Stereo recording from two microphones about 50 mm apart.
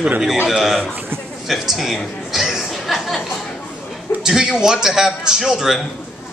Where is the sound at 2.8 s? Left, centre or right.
Centre.